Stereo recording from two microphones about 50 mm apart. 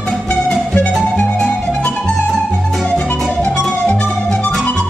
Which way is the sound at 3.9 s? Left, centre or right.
Centre.